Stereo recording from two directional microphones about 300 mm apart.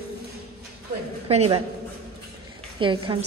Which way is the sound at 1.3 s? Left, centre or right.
Right.